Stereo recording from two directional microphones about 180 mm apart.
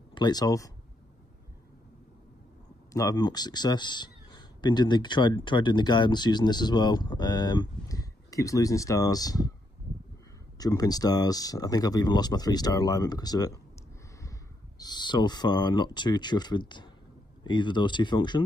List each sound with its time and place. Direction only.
0.1 s speech: 25° left (ahead or behind)
2.9 s speech: 20° left (ahead or behind)
10.6 s speech: 20° left (ahead or behind)
14.8 s speech: 25° left (ahead or behind)